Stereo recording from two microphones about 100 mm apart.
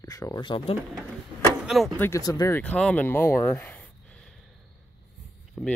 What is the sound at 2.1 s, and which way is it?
Speech, 35° left (ahead or behind).